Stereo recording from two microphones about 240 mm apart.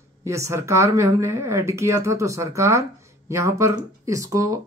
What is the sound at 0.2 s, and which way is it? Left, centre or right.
Speech, centre.